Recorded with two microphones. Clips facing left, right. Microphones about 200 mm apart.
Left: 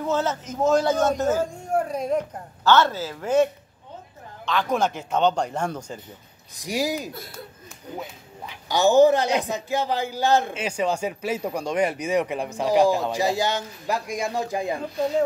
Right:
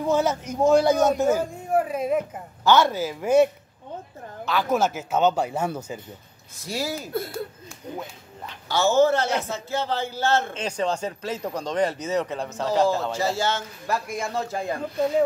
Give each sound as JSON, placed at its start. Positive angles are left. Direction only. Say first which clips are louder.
{"t": 0.0, "sound": "a man's voice", "louder": "right 2 dB", "side_deg": -10}
{"t": 4.5, "sound": "speech", "louder": "right 1 dB", "side_deg": -5}
{"t": 6.6, "sound": "a man's voice", "louder": "left 3 dB", "side_deg": 15}
{"t": 8.5, "sound": "a man's voice", "louder": "left 3 dB", "side_deg": 15}